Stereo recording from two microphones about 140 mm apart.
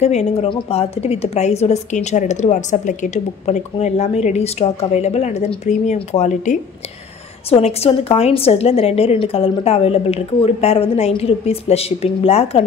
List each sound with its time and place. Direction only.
0.0 s a woman's voice: 50° left (ahead or behind)
7.4 s a woman's voice: 45° left (ahead or behind)